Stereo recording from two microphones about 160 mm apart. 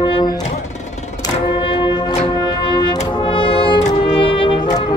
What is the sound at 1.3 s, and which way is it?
Music, 35° left (ahead or behind).